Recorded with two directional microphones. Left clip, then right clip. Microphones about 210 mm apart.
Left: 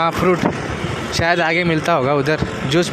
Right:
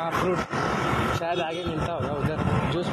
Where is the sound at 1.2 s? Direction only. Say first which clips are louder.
Left 12 dB; 40° left (ahead or behind).